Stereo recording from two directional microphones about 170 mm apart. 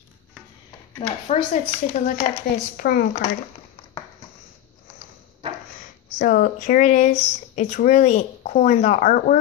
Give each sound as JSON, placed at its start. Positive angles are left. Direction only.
{"t": 1.3, "sound": "speech", "side_deg": 40}
{"t": 2.5, "sound": "a woman's voice", "side_deg": 60}
{"t": 6.1, "sound": "speech", "side_deg": 55}